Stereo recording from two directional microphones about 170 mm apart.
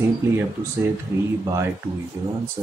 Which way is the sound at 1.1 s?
15° right (ahead or behind).